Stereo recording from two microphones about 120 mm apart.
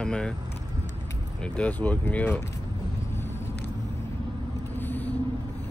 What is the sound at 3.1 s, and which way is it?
Vehicle, 20° left (ahead or behind).